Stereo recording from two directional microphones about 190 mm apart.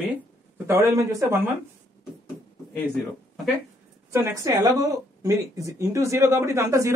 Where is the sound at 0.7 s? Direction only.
15° right (ahead or behind).